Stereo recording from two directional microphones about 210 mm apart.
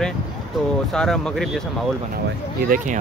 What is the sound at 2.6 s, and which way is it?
Speech, 40° right (ahead or behind).